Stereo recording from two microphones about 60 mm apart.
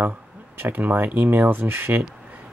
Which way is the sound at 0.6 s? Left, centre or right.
Right.